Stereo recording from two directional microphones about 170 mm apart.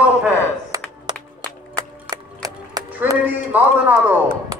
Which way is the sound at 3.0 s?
10° right (ahead or behind).